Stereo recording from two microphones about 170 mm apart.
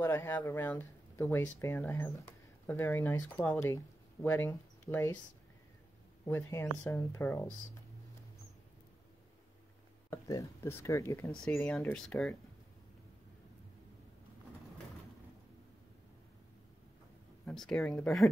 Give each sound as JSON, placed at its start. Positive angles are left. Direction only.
{"t": 0.0, "sound": "speech", "side_deg": 15}
{"t": 6.2, "sound": "speech", "side_deg": 15}
{"t": 10.0, "sound": "speech", "side_deg": 20}
{"t": 17.5, "sound": "speech", "side_deg": 5}